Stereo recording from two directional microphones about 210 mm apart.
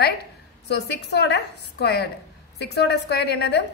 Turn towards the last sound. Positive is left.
turn(degrees=50)  # may be behind; listen again after turning